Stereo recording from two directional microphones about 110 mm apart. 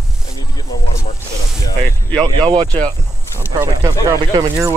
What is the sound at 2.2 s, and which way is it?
Speech, 45° right (ahead or behind).